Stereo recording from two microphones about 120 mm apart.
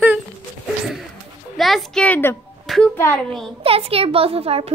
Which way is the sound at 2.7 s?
Centre (ahead or behind).